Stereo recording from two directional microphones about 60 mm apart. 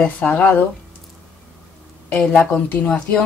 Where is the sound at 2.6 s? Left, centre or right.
Left.